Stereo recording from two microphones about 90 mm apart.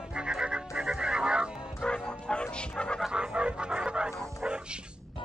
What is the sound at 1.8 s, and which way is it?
Music, 10° left (ahead or behind).